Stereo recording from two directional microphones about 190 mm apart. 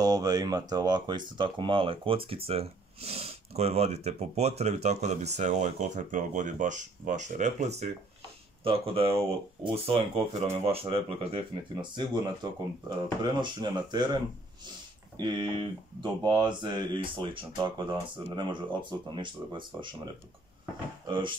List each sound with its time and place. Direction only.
0.0 s speech: 20° right (ahead or behind)
15.1 s speech: 25° right (ahead or behind)
21.1 s speech: 25° right (ahead or behind)